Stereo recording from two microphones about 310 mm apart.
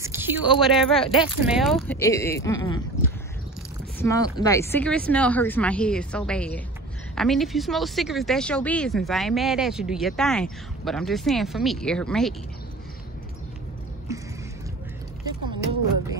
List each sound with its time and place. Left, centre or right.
0.0 s a sound: centre
0.6 s speech: centre
1.0 s speech: centre
1.4 s speech: centre